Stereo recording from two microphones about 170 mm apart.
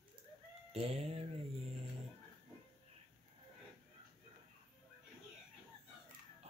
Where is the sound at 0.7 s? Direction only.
40° right (ahead or behind).